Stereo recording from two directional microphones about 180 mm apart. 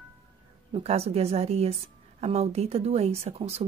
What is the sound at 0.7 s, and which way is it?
A woman's voice, 35° right (ahead or behind).